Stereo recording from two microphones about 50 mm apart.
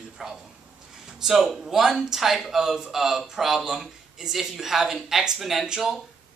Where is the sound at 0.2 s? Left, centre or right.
Centre.